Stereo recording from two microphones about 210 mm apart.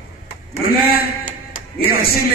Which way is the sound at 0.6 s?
45° left (ahead or behind).